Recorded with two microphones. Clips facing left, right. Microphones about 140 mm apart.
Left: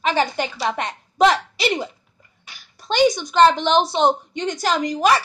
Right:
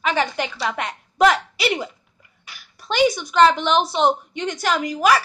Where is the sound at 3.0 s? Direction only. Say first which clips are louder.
Left 1 dB; 5° right (ahead or behind).